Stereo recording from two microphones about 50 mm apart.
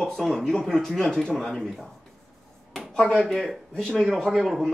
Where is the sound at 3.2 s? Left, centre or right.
Centre.